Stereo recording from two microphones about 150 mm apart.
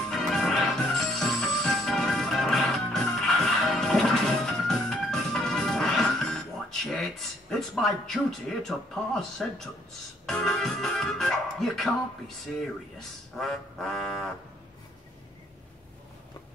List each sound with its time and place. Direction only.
0.0 s music: 5° left (ahead or behind)
10.2 s speech: 5° left (ahead or behind)
13.4 s speech: centre (ahead or behind)